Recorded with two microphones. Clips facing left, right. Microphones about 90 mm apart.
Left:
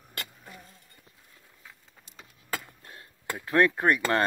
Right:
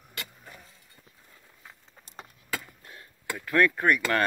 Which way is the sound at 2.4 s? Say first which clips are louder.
Left 1 dB; 35° left (ahead or behind).